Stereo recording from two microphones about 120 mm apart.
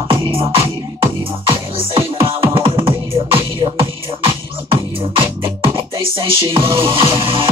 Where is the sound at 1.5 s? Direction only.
50° right (ahead or behind).